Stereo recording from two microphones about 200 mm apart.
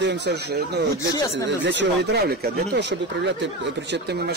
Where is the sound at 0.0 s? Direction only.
60° right (ahead or behind).